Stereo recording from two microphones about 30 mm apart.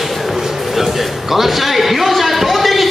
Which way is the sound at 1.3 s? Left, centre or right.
Centre.